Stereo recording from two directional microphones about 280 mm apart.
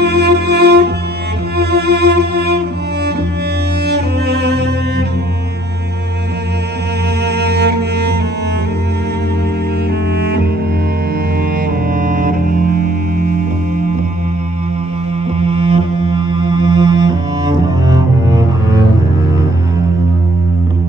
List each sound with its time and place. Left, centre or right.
0.0 s music: right
3.8 s cello: right
7.2 s music: right
10.2 s cello: right
12.0 s music: right
15.3 s music: centre